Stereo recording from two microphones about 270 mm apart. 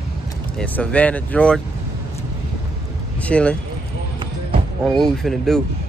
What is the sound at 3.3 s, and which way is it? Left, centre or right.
Speech, centre.